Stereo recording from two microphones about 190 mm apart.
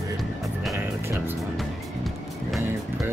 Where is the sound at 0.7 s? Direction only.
15° right (ahead or behind).